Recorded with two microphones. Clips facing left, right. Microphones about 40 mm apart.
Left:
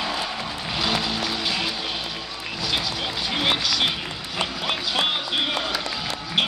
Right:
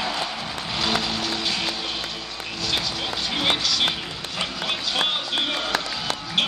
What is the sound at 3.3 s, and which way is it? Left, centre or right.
Music, centre.